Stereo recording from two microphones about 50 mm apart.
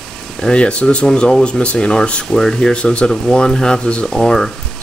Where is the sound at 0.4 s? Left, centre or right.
Centre.